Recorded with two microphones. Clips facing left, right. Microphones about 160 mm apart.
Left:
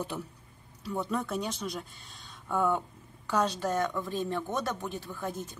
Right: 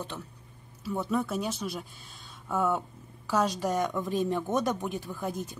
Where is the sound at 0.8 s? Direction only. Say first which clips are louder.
Right 3 dB; 5° right (ahead or behind).